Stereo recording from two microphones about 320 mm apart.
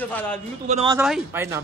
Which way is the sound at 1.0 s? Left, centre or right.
Centre.